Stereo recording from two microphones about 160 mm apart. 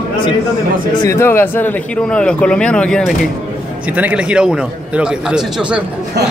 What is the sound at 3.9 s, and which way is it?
A man's voice, 10° right (ahead or behind).